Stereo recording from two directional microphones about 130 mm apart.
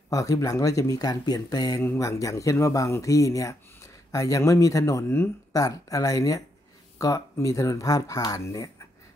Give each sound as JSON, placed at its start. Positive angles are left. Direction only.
{"t": 0.1, "sound": "speech", "side_deg": 25}